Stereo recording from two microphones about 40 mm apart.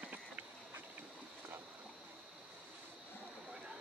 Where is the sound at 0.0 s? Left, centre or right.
Right.